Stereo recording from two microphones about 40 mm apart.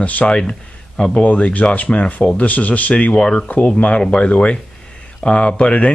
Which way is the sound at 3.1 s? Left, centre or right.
Left.